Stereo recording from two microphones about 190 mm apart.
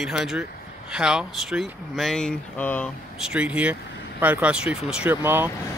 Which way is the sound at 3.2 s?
5° right (ahead or behind).